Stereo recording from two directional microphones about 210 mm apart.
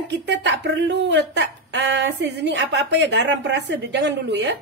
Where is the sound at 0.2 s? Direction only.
60° right (ahead or behind).